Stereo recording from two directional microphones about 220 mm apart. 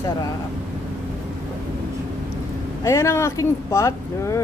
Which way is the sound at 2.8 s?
15° left (ahead or behind).